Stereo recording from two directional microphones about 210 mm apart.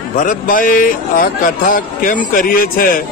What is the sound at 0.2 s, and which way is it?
A man's voice, 40° left (ahead or behind).